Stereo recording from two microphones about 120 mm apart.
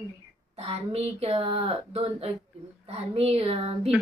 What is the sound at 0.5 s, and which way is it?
A woman's voice, 55° right (ahead or behind).